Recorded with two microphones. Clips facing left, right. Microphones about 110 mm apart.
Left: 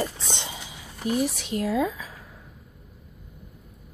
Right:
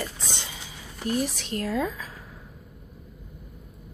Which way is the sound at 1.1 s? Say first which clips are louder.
Left 2 dB; 10° left (ahead or behind).